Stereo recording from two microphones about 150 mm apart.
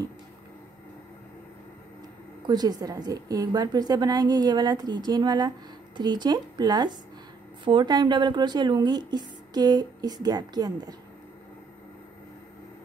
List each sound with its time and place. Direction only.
2.4 s speech: 25° right (ahead or behind)